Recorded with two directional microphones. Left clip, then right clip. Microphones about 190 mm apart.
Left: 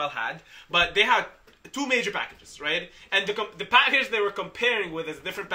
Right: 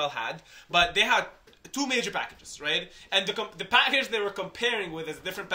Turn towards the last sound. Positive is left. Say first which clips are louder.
# left 2 dB
turn(degrees=-10)  # may be behind; listen again after turning